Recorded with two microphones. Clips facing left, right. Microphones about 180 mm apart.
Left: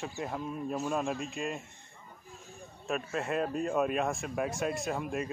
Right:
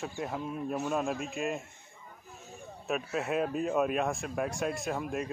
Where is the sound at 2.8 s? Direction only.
Centre (ahead or behind).